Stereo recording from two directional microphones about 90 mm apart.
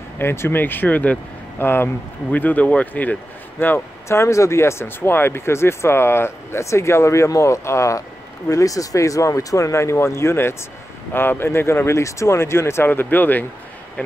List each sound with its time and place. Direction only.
0.2 s speech: 25° left (ahead or behind)